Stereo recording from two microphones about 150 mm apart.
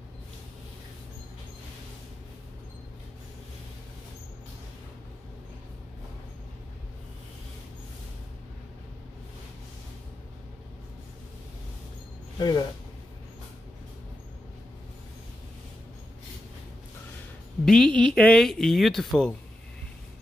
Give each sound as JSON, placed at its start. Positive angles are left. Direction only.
{"t": 12.4, "sound": "speech", "side_deg": 30}
{"t": 17.6, "sound": "speech", "side_deg": 5}